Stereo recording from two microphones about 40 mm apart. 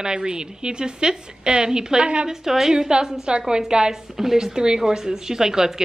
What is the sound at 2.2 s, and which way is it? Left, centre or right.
A woman's voice, centre.